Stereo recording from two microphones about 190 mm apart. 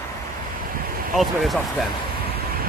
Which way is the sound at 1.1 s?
Centre (ahead or behind).